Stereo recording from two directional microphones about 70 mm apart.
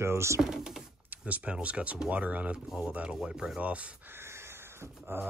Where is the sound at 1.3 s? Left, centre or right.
Centre.